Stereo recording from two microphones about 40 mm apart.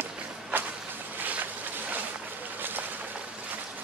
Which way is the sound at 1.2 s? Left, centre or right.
Right.